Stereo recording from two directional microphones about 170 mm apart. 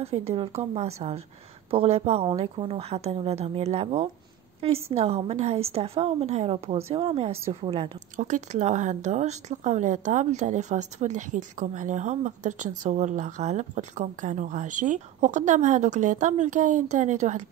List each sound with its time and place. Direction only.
0.0 s a woman's voice: 35° right (ahead or behind)
8.2 s a woman's voice: 45° right (ahead or behind)